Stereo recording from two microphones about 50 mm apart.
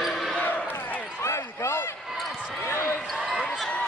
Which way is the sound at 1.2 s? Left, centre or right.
Left.